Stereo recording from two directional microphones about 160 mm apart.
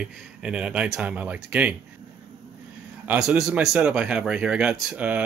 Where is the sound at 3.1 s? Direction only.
5° right (ahead or behind).